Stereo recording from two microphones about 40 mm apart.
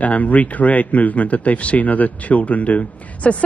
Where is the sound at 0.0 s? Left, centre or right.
Left.